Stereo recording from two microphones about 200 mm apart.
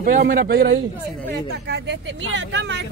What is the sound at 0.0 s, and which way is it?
Speech, 45° right (ahead or behind).